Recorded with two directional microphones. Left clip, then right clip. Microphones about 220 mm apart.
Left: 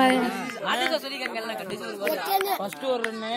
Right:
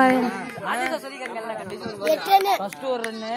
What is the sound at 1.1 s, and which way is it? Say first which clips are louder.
Speech: even; 45° left (ahead or behind).